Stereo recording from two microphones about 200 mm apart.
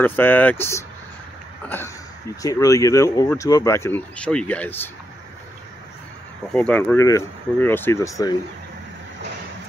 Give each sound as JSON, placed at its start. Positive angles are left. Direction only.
{"t": 0.0, "sound": "speech", "side_deg": 10}
{"t": 2.4, "sound": "speech", "side_deg": 15}
{"t": 6.5, "sound": "speech", "side_deg": 5}